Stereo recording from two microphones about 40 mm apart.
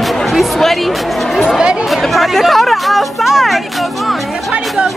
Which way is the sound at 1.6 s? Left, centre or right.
Right.